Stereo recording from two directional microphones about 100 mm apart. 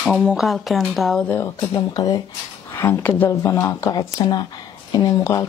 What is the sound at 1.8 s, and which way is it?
Speech, 40° left (ahead or behind).